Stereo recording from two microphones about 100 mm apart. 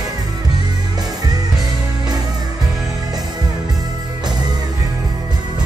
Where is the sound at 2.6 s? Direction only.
40° right (ahead or behind).